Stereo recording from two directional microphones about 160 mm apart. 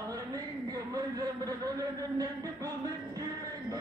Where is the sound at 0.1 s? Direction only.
25° right (ahead or behind).